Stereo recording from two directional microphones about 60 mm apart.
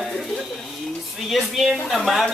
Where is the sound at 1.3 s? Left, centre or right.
Centre.